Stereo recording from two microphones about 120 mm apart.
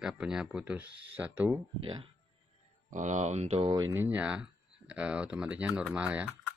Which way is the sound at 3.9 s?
15° right (ahead or behind).